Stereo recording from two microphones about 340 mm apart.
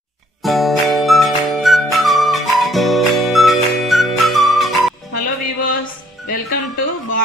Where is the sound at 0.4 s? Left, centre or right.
Centre.